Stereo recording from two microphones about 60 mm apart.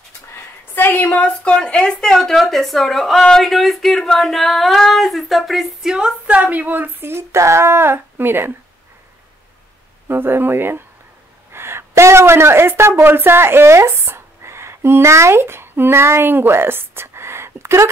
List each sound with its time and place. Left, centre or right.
0.7 s a woman's voice: left; by 6.1 s centre
6.2 s speech: right
10.0 s a woman's voice: right